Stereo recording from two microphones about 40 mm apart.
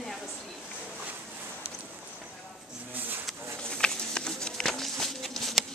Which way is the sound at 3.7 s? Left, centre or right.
Left.